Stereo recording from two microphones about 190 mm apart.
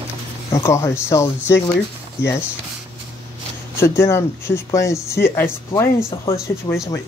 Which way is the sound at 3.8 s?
15° left (ahead or behind).